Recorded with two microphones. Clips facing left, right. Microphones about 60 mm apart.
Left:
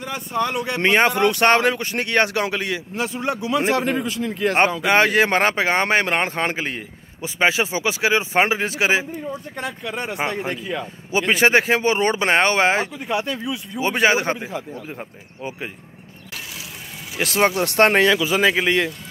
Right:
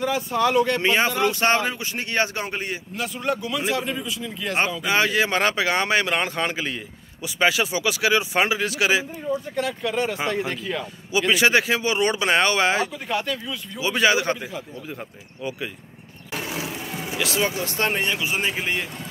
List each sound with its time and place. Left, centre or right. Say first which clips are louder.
0.0 s speech: right 2 dB; centre
0.7 s speech: left 4 dB; left
3.0 s speech: left 1 dB; left
3.4 s a man's voice: left 5 dB; left
10.0 s speech: even; left
11.1 s a man's voice: left 2 dB; left
17.2 s speech: left 6 dB; left
18.0 s a man's voice: left 8 dB; left